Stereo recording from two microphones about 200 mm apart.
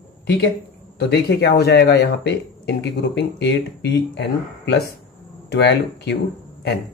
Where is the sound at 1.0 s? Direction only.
55° left (ahead or behind).